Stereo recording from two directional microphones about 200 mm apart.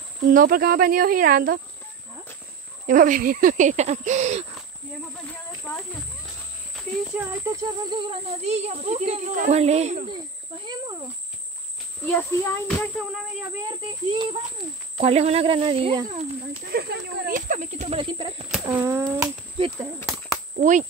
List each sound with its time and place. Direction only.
0.3 s speech: 45° right (ahead or behind)
2.9 s speech: 40° right (ahead or behind)
7.2 s speech: 15° right (ahead or behind); by 10.1 s 35° right (ahead or behind)
10.6 s speech: 20° right (ahead or behind)
12.1 s a child's voice: 10° left (ahead or behind)
13.7 s speech: 25° right (ahead or behind)
16.7 s speech: 55° right (ahead or behind); by 18.5 s 25° right (ahead or behind)
18.6 s a sound: 20° right (ahead or behind)
20.5 s speech: 40° right (ahead or behind)